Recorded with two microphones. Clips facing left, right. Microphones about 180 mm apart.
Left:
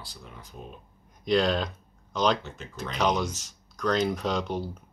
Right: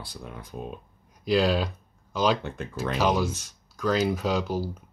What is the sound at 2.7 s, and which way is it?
Speech, 5° right (ahead or behind).